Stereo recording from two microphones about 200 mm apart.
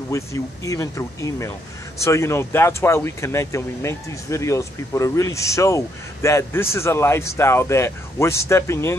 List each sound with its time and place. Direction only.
0.1 s speech: 15° left (ahead or behind)